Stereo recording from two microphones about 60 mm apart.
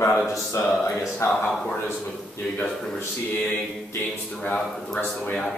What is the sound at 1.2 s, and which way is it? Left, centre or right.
Speech, left.